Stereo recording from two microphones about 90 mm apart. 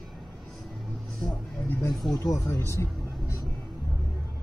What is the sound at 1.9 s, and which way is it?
Speech, centre (ahead or behind).